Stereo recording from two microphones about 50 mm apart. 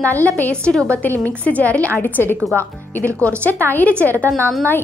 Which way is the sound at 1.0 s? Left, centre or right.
Left.